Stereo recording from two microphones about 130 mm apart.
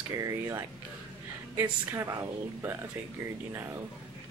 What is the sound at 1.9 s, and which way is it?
Speech, 20° right (ahead or behind).